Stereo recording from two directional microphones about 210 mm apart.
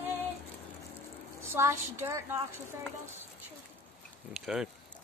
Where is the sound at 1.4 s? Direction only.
10° right (ahead or behind).